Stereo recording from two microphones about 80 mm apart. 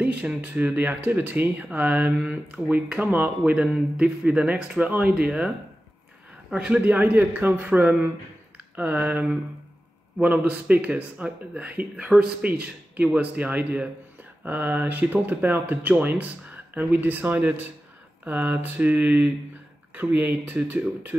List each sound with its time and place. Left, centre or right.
0.0 s speech: centre
6.5 s speech: centre